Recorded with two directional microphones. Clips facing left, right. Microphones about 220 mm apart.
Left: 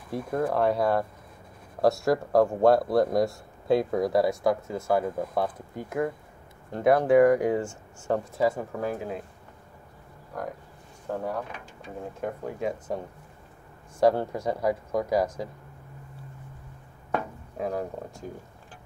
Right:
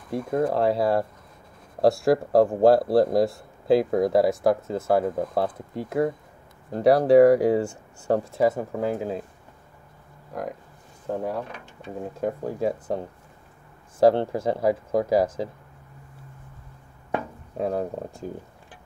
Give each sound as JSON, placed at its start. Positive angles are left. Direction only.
{"t": 0.1, "sound": "speech", "side_deg": -25}
{"t": 11.1, "sound": "speech", "side_deg": -20}
{"t": 12.2, "sound": "speech", "side_deg": -35}
{"t": 17.6, "sound": "speech", "side_deg": -30}